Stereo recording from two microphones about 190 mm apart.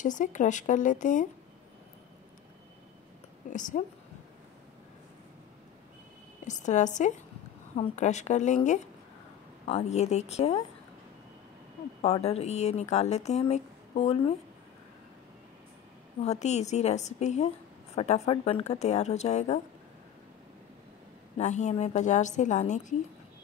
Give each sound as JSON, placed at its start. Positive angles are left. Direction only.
{"t": 0.0, "sound": "speech", "side_deg": 40}
{"t": 3.4, "sound": "a woman's voice", "side_deg": 40}
{"t": 6.4, "sound": "speech", "side_deg": 40}
{"t": 9.7, "sound": "speech", "side_deg": 35}
{"t": 12.0, "sound": "speech", "side_deg": 35}
{"t": 16.2, "sound": "speech", "side_deg": 35}
{"t": 21.4, "sound": "speech", "side_deg": 40}